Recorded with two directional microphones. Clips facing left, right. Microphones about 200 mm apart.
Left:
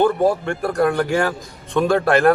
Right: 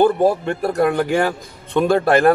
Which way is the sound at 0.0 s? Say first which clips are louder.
Right 2 dB; 5° right (ahead or behind).